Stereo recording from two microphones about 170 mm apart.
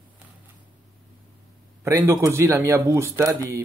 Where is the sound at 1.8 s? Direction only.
15° right (ahead or behind).